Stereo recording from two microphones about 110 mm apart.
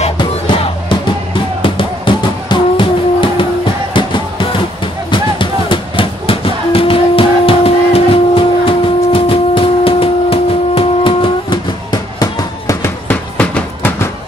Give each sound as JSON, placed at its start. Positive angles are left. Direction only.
{"t": 0.2, "sound": "music", "side_deg": 50}
{"t": 12.2, "sound": "fireworks", "side_deg": 30}
{"t": 13.1, "sound": "train", "side_deg": 15}